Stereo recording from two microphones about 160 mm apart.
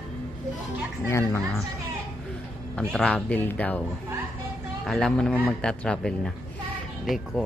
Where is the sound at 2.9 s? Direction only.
Centre (ahead or behind).